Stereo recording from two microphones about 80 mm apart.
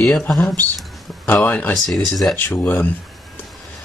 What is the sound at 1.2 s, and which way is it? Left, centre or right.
Speech, left.